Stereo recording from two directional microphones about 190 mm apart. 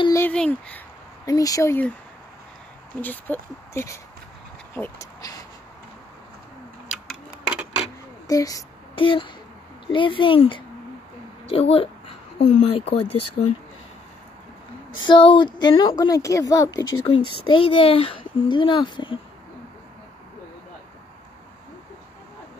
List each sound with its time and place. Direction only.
0.0 s a sound: 15° left (ahead or behind)
0.3 s speech: 5° left (ahead or behind)
3.0 s speech: 10° left (ahead or behind)
4.7 s vehicle: 10° left (ahead or behind)
7.4 s a sound: 5° right (ahead or behind)
8.3 s speech: 20° left (ahead or behind)
11.4 s a sound: 30° left (ahead or behind)
12.4 s speech: 35° left (ahead or behind)
15.0 s speech: 25° left (ahead or behind)